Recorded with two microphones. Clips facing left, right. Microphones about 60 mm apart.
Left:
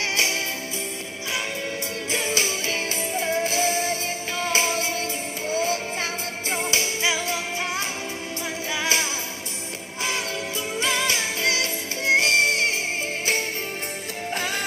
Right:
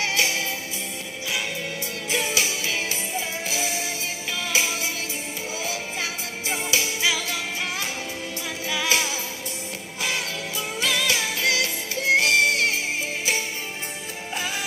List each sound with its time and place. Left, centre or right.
0.1 s music: left
2.0 s music: left
7.0 s music: left
8.6 s music: left
10.8 s music: left
14.3 s music: left